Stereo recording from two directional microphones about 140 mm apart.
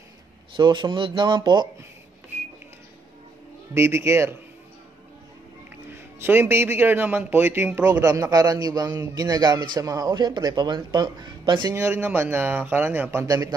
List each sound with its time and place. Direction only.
0.6 s speech: 30° right (ahead or behind)
3.7 s speech: 20° right (ahead or behind)
6.1 s a man's voice: 15° right (ahead or behind); by 11.7 s 35° right (ahead or behind)
11.7 s a man's voice: 15° right (ahead or behind)